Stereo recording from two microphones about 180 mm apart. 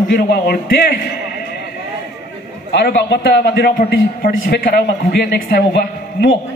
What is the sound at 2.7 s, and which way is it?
A man's voice, 65° left (ahead or behind).